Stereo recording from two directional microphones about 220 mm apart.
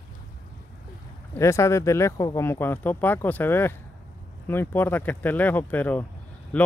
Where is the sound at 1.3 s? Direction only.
15° left (ahead or behind).